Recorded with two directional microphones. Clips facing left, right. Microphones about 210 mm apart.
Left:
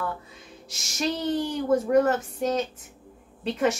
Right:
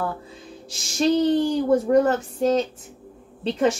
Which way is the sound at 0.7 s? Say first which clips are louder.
Right 8 dB; 30° right (ahead or behind).